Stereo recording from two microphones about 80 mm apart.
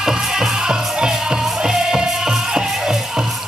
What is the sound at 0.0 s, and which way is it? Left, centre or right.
Music, centre.